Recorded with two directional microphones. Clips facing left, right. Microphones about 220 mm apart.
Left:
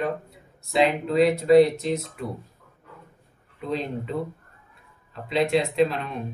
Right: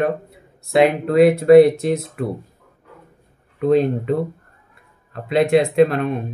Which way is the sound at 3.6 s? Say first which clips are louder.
Right 12 dB; 60° right (ahead or behind).